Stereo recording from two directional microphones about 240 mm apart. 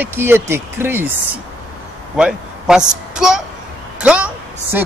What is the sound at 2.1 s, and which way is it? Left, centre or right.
A woman's voice, centre.